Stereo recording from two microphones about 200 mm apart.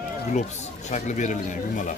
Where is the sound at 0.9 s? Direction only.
35° left (ahead or behind).